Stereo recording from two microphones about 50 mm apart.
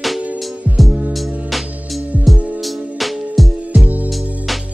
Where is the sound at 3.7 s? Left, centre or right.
Right.